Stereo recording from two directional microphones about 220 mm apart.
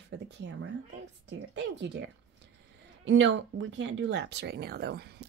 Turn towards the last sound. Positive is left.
turn(degrees=-45)  # may be behind; listen again after turning